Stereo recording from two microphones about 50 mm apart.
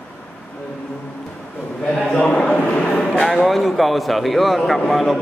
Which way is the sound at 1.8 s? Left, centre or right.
Centre.